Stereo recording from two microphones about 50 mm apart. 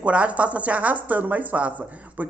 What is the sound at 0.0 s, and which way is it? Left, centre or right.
A man's voice, right.